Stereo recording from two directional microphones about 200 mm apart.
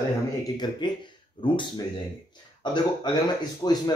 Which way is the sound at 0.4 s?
20° left (ahead or behind).